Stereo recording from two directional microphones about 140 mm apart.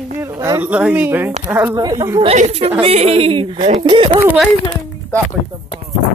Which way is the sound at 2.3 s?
50° right (ahead or behind).